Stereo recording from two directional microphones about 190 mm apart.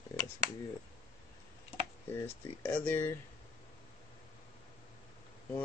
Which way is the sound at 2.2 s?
10° left (ahead or behind).